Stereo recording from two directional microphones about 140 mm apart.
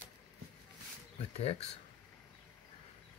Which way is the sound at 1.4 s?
45° left (ahead or behind).